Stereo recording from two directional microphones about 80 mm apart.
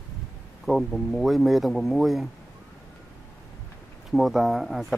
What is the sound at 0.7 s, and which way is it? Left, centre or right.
Speech, centre.